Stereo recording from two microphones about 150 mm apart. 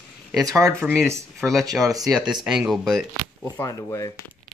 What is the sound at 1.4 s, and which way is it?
Speech, centre (ahead or behind).